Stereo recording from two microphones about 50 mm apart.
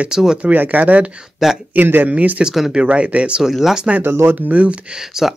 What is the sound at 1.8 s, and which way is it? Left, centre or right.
Speech, right.